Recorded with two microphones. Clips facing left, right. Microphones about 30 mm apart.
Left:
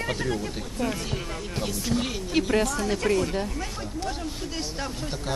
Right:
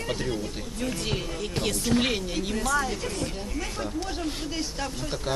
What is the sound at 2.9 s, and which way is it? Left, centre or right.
Speech, left.